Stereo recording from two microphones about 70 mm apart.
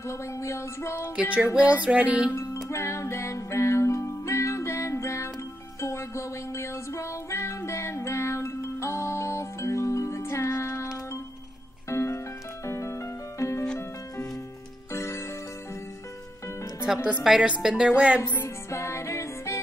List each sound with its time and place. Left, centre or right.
0.0 s music: left
1.3 s music: centre
2.7 s music: left
11.9 s music: left
14.9 s music: left
16.8 s speech: centre
18.2 s music: left
18.7 s music: left